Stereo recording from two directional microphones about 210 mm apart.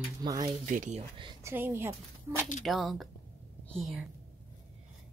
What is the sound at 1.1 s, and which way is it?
Speech, 25° right (ahead or behind).